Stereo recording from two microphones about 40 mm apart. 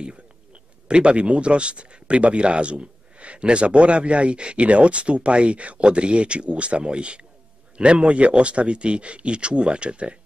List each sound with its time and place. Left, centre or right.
0.8 s speech: right